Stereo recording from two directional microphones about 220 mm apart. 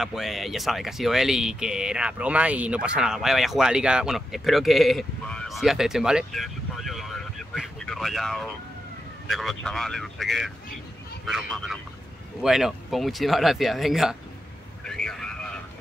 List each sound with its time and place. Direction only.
0.0 s speech: centre (ahead or behind)
14.9 s vehicle: 5° left (ahead or behind)